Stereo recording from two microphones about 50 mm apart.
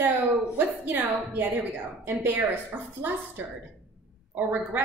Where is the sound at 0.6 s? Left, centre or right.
Right.